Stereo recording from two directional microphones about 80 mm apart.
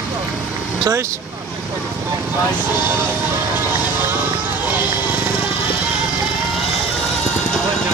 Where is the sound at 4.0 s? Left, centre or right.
Right.